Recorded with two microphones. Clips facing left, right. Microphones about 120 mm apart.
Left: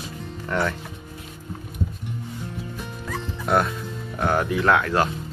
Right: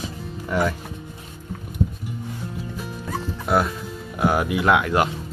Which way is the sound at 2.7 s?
5° right (ahead or behind).